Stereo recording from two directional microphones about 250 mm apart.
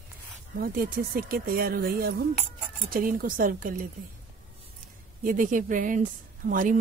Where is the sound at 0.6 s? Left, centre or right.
Right.